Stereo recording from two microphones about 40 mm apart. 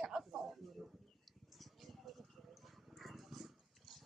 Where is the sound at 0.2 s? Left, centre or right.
Centre.